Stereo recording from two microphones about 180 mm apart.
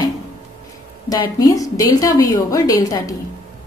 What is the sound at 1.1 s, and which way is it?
A woman's voice, 20° left (ahead or behind).